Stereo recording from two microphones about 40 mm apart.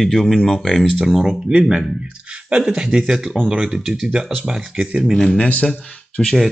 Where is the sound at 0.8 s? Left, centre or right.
Centre.